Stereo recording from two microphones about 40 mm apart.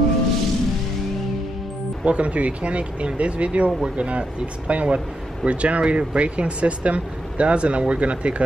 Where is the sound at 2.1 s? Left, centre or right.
Right.